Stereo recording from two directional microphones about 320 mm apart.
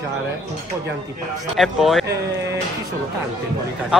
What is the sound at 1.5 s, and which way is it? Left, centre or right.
Speech, centre.